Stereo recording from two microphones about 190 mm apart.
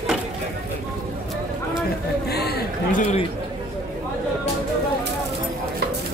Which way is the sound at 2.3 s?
55° left (ahead or behind).